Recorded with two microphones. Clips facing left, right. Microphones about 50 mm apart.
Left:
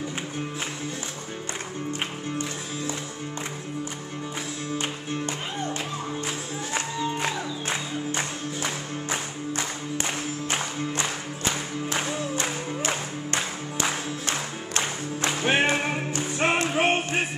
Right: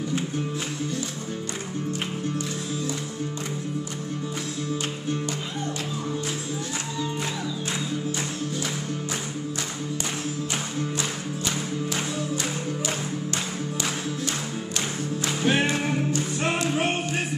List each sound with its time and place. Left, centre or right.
4.7 s music: left
10.5 s music: left